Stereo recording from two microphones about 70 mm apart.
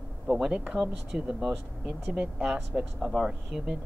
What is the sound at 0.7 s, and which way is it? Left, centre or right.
Speech, centre.